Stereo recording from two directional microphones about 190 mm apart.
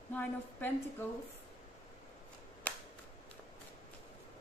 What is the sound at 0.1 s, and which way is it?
Speech, 10° left (ahead or behind).